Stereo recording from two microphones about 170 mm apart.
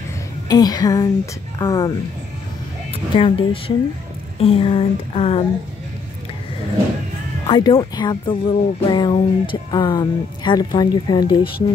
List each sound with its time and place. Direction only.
0.5 s speech: 20° left (ahead or behind)
3.2 s speech: 30° left (ahead or behind)
7.4 s speech: 25° left (ahead or behind)